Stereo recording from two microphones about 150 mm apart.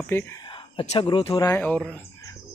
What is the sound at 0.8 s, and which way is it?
Speech, 40° left (ahead or behind).